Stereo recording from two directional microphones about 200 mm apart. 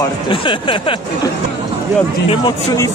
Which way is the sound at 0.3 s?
25° left (ahead or behind).